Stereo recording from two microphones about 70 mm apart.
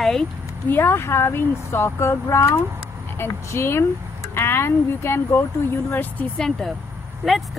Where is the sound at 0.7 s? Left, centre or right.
Left.